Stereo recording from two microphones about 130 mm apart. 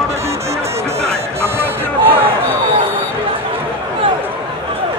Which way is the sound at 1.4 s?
15° right (ahead or behind).